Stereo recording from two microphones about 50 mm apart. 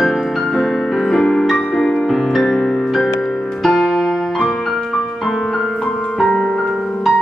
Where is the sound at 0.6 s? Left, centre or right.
Centre.